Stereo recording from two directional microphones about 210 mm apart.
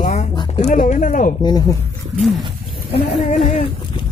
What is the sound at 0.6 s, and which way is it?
Speech, 35° left (ahead or behind).